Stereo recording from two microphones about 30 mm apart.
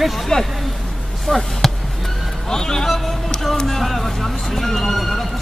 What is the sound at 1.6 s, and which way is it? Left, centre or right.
Basketball bounce, centre.